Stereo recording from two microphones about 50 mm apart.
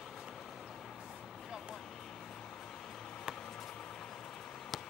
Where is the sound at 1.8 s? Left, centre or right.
Centre.